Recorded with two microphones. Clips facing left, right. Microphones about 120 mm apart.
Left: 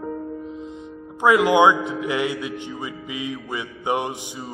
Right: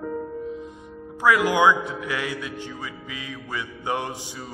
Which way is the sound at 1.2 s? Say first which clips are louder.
Left 3 dB; 20° left (ahead or behind).